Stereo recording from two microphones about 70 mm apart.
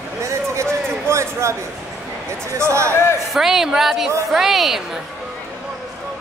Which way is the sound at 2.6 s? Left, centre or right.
Right.